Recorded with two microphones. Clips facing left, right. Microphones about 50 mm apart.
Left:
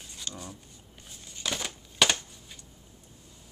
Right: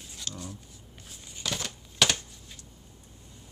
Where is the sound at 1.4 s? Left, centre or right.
Centre.